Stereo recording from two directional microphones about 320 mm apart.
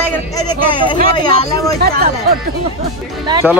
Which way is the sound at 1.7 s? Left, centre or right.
Right.